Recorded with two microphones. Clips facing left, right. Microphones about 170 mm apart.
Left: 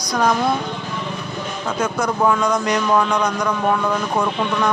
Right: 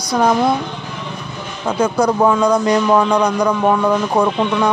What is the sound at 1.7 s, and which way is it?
A man's voice, 30° right (ahead or behind).